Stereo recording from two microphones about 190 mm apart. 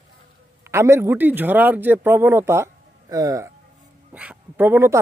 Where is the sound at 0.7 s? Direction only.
15° right (ahead or behind).